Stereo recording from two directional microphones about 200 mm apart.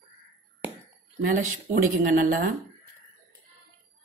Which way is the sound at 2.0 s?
45° right (ahead or behind).